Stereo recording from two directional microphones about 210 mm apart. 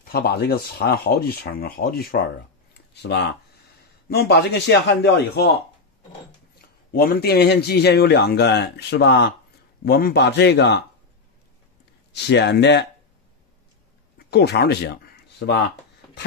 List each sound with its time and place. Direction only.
0.1 s a man's voice: 50° left (ahead or behind)
6.9 s a man's voice: 45° left (ahead or behind)
12.1 s a man's voice: 55° left (ahead or behind)
14.1 s a sound: 50° left (ahead or behind)